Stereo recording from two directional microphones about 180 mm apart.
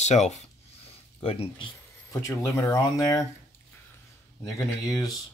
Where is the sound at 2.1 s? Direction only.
15° left (ahead or behind).